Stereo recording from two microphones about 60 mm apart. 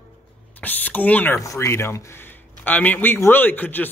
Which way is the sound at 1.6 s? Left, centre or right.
Left.